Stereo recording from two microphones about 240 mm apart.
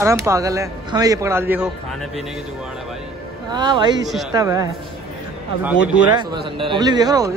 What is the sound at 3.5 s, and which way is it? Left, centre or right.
Speech, centre.